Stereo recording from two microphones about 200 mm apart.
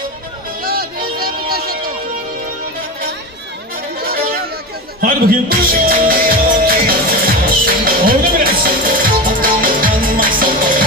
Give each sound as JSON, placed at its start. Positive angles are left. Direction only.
{"t": 0.6, "sound": "music", "side_deg": -50}
{"t": 5.0, "sound": "music", "side_deg": -45}